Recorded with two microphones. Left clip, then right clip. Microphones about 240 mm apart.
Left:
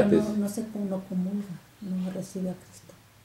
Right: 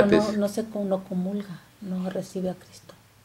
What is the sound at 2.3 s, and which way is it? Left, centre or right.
Speech, left.